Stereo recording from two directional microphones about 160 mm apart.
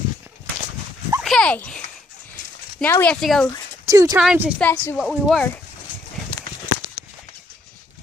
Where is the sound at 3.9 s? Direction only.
20° right (ahead or behind).